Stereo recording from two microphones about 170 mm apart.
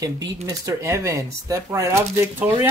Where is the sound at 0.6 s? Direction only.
15° right (ahead or behind).